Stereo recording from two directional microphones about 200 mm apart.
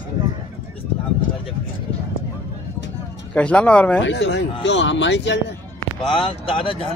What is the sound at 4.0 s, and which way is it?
Speech, 65° left (ahead or behind).